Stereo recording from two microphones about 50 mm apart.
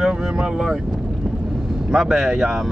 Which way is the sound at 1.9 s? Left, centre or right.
Centre.